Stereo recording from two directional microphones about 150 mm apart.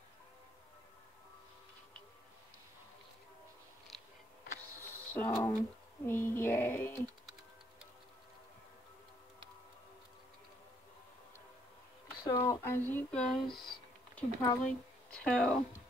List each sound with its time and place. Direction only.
3.9 s a sound: centre (ahead or behind)
5.3 s speech: 25° left (ahead or behind)
6.0 s speech: 15° left (ahead or behind)
12.4 s speech: 20° left (ahead or behind)